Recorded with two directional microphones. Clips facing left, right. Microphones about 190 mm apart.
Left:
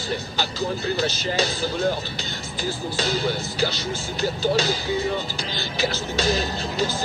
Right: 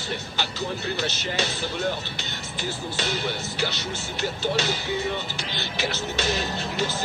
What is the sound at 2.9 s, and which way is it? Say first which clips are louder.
Speech: left 5 dB; 35° left (ahead or behind).